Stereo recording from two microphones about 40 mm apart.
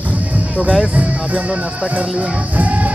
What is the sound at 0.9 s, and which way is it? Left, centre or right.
Speech, right.